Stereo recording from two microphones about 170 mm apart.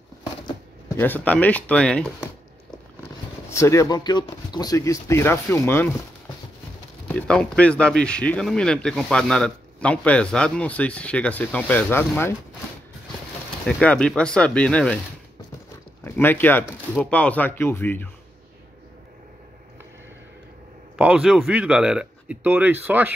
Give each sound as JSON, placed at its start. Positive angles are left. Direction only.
{"t": 0.8, "sound": "speech", "side_deg": 10}
{"t": 3.4, "sound": "speech", "side_deg": 15}
{"t": 7.1, "sound": "speech", "side_deg": 5}
{"t": 13.7, "sound": "speech", "side_deg": 5}
{"t": 16.0, "sound": "speech", "side_deg": 15}
{"t": 21.0, "sound": "speech", "side_deg": -5}